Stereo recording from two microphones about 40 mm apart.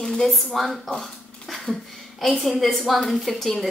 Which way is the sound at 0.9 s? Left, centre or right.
Centre.